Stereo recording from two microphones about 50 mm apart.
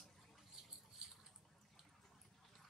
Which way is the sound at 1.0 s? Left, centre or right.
Centre.